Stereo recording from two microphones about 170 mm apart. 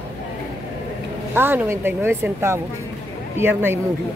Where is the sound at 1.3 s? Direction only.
10° right (ahead or behind).